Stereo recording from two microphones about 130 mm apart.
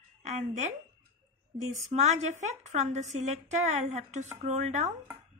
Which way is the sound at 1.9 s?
60° right (ahead or behind).